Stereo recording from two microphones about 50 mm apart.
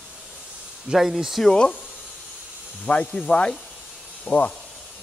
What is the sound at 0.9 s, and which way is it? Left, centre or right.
Speech, centre.